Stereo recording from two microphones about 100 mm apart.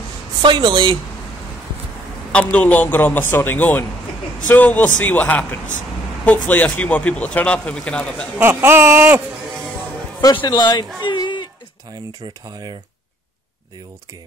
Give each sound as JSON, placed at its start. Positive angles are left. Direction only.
{"t": 0.4, "sound": "speech", "side_deg": -50}
{"t": 2.3, "sound": "speech", "side_deg": 15}
{"t": 8.4, "sound": "speech", "side_deg": -25}
{"t": 10.3, "sound": "a man's voice", "side_deg": 45}